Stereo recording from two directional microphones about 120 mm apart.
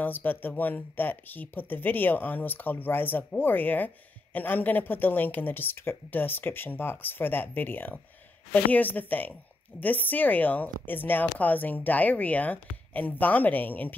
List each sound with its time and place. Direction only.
0.0 s speech: 15° left (ahead or behind)